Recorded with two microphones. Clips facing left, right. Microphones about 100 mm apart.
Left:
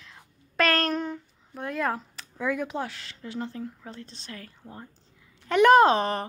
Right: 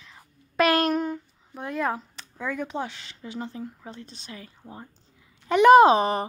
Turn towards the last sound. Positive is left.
turn(degrees=-10)  # may be behind; listen again after turning